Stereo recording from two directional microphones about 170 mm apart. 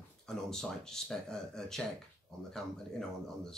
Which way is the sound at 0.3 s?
5° left (ahead or behind).